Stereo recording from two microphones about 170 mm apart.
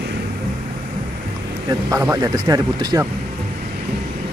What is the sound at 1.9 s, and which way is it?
Speech, 15° right (ahead or behind).